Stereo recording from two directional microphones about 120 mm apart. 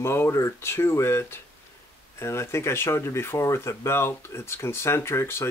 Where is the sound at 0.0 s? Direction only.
20° left (ahead or behind).